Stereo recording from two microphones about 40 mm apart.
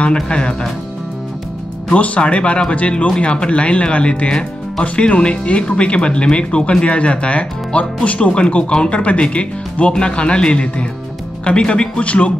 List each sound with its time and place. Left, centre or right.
0.0 s speech: left
2.0 s speech: left
12.0 s speech: left